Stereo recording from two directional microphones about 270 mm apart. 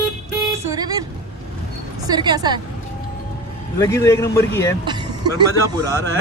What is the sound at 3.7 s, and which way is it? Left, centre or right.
Speech, centre.